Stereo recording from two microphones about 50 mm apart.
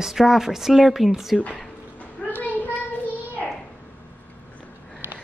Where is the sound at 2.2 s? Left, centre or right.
Left.